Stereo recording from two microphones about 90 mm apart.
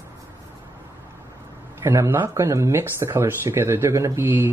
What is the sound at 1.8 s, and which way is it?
Speech, 30° right (ahead or behind).